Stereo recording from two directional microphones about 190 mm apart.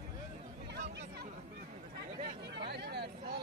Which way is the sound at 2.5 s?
60° right (ahead or behind).